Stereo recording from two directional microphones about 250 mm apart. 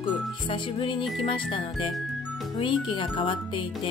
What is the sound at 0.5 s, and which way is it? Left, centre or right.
Speech, left.